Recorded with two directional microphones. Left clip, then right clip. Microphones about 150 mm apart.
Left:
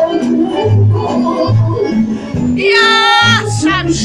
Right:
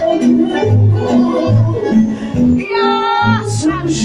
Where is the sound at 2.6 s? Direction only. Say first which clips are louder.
Left 9 dB; 20° left (ahead or behind).